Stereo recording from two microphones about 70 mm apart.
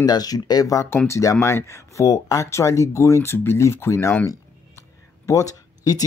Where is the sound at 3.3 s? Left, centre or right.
Left.